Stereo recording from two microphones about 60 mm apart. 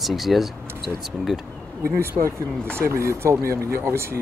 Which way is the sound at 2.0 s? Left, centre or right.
Right.